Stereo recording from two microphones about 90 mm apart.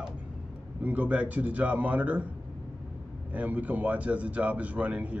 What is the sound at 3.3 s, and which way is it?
A man's voice, 15° right (ahead or behind).